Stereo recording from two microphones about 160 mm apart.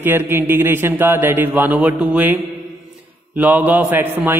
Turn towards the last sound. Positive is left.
turn(degrees=-10)  # may be behind; listen again after turning